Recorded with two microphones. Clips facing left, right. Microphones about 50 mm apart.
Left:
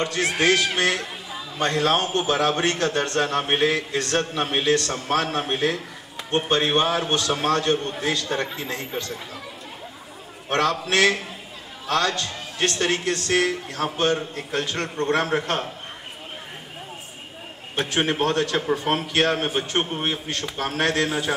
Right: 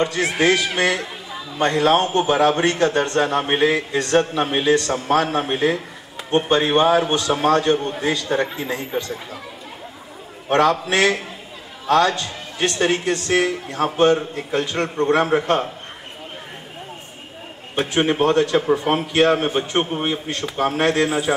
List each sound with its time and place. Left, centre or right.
0.0 s a man's voice: centre
10.5 s a man's voice: centre
17.7 s a man's voice: centre
20.2 s a man's voice: centre